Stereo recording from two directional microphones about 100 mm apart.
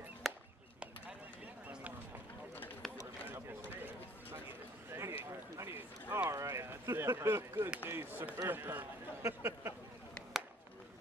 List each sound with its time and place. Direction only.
0.2 s chop: centre (ahead or behind)
1.7 s run: 15° right (ahead or behind)
3.3 s a sound: 20° right (ahead or behind)
5.6 s run: 20° right (ahead or behind)
6.3 s a sound: 30° right (ahead or behind)
7.7 s speech: 20° right (ahead or behind)